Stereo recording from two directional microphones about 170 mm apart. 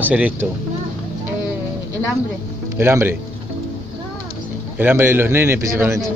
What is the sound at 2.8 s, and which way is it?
Speech, 15° right (ahead or behind).